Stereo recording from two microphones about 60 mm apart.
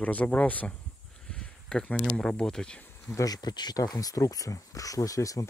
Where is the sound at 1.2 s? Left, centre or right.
Centre.